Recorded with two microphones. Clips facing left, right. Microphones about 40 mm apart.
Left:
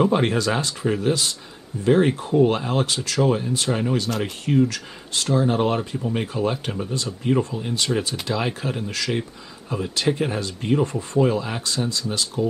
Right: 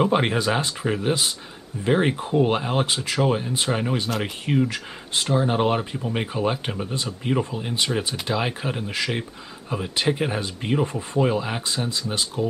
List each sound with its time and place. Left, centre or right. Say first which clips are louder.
0.0 s speech: left 1 dB; centre